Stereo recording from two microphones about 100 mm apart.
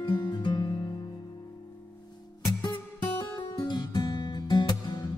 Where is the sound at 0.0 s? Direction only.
45° left (ahead or behind).